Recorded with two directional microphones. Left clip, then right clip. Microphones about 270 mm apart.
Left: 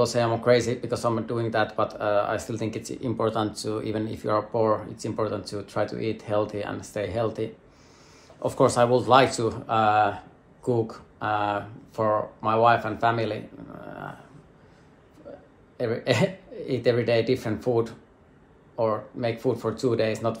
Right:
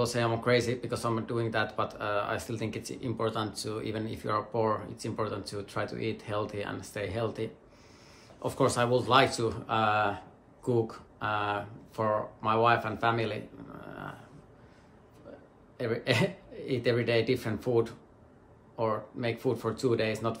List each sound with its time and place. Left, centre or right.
0.0 s speech: centre
15.3 s a sound: centre
15.8 s speech: centre